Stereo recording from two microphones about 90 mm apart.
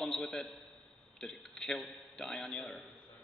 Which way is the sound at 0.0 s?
5° left (ahead or behind).